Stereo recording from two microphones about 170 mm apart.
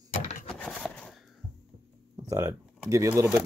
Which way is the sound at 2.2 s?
20° right (ahead or behind).